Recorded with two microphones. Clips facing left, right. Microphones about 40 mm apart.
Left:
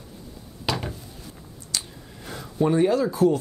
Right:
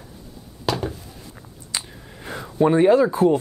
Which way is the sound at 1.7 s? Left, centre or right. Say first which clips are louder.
Right 1 dB; right.